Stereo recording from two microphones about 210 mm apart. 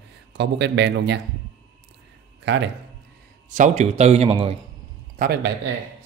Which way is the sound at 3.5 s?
35° right (ahead or behind).